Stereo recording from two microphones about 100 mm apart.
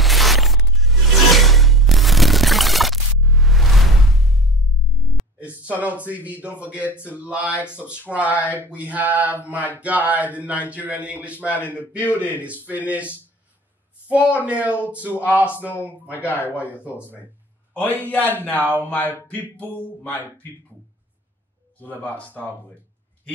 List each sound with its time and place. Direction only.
0.0 s music: centre (ahead or behind)
5.7 s mantra: 15° right (ahead or behind)
8.5 s speech: 15° left (ahead or behind)
8.7 s mantra: 15° right (ahead or behind)
14.1 s mantra: 15° right (ahead or behind)
15.5 s speech: 20° left (ahead or behind)
16.4 s mantra: 15° right (ahead or behind)
16.7 s speech: 20° left (ahead or behind)
22.0 s speech: 15° left (ahead or behind)